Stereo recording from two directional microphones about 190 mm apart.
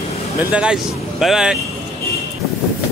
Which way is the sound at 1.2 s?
5° right (ahead or behind).